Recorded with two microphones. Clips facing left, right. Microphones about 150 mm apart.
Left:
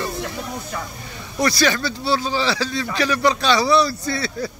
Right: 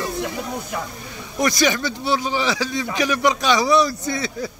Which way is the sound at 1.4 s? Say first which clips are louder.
Even; 15° right (ahead or behind).